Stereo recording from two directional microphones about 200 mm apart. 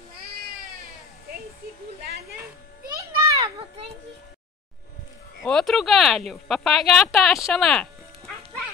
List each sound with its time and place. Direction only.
3.0 s children playing: 20° right (ahead or behind)
5.4 s speech: centre (ahead or behind)